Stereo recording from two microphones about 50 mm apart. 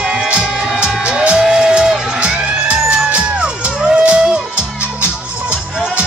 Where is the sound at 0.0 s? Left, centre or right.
Centre.